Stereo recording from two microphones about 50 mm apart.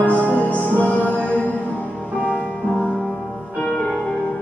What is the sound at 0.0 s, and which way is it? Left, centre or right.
Music, left.